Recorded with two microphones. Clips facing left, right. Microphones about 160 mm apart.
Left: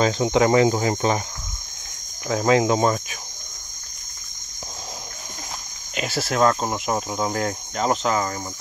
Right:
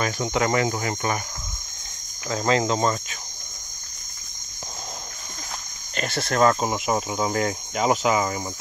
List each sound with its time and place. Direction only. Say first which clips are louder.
0.0 s cricket: left 5 dB; 20° left (ahead or behind)
2.2 s cricket: left 4 dB; 10° left (ahead or behind)
5.9 s cricket: even; 5° left (ahead or behind)